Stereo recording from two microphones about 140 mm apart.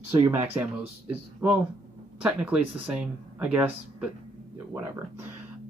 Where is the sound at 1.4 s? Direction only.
10° right (ahead or behind).